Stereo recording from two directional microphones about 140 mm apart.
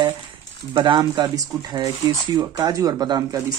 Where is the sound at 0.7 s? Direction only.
35° right (ahead or behind).